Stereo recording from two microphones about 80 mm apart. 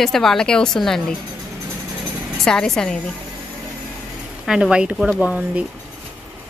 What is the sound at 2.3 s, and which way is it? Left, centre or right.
Speech, centre.